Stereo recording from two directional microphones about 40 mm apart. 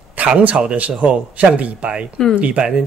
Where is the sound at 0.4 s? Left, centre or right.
Right.